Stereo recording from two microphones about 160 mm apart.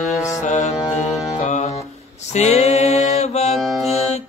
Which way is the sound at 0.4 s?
50° left (ahead or behind).